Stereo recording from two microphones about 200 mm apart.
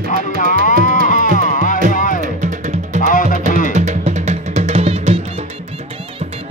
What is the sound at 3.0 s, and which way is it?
Music, 40° left (ahead or behind).